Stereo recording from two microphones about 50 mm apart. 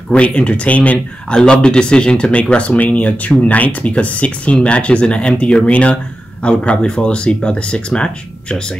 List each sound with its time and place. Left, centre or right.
0.1 s speech: left